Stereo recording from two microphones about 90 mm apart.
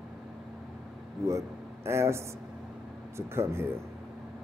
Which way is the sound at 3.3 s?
30° right (ahead or behind).